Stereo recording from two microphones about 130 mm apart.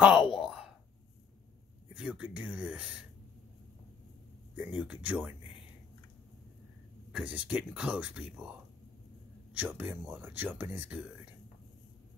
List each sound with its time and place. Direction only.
0.2 s a sound: 45° left (ahead or behind)
2.0 s speech: 10° right (ahead or behind)
4.6 s speech: 10° right (ahead or behind)
7.1 s speech: 5° right (ahead or behind)